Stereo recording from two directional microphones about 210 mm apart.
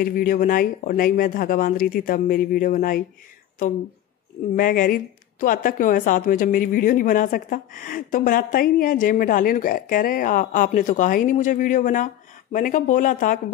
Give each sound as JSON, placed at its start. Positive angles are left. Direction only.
{"t": 0.0, "sound": "speech", "side_deg": 40}
{"t": 4.6, "sound": "speech", "side_deg": 40}